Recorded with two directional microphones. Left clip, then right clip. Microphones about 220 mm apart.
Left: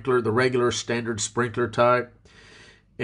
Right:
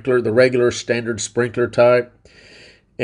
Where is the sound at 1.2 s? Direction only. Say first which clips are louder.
Right 6 dB; 35° left (ahead or behind).